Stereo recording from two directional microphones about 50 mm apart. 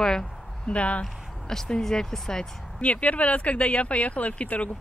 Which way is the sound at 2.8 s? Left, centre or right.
Left.